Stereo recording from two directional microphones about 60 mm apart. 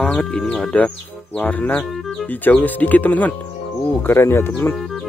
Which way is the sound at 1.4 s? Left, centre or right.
Left.